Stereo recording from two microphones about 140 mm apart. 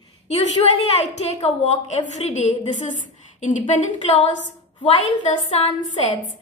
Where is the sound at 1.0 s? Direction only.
50° left (ahead or behind).